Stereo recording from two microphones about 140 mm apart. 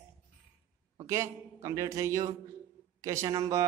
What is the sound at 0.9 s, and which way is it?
A man's voice, 20° right (ahead or behind).